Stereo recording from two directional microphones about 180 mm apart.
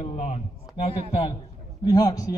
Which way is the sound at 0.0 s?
40° left (ahead or behind).